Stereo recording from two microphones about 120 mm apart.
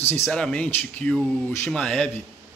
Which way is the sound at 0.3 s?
10° left (ahead or behind).